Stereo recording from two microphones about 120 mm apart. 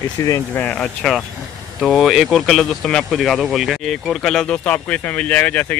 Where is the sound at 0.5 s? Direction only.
10° left (ahead or behind).